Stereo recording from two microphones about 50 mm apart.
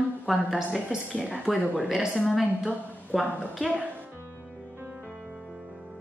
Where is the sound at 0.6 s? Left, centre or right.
Centre.